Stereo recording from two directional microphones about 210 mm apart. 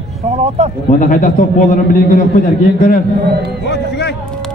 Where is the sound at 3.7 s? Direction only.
55° left (ahead or behind).